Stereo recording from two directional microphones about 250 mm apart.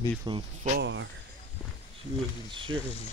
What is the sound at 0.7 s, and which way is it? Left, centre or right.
Speech, right.